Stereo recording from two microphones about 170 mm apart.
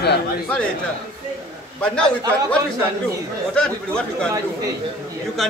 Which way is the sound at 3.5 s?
5° left (ahead or behind).